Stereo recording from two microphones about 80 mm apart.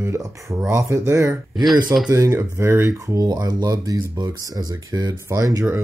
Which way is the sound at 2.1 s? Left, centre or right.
Right.